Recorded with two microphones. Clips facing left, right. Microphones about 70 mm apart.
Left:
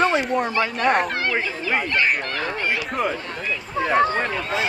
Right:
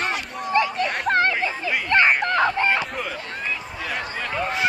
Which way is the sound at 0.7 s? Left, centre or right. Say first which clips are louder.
Left 6 dB; left.